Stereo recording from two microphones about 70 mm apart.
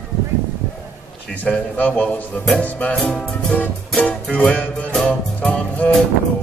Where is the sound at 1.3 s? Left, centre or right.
Left.